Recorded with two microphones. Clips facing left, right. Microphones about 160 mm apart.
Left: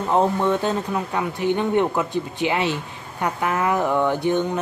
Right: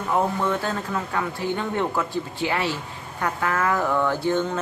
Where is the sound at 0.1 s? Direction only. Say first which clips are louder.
Left 4 dB; 20° left (ahead or behind).